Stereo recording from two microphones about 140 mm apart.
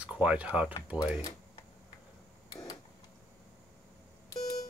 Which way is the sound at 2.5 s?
25° left (ahead or behind).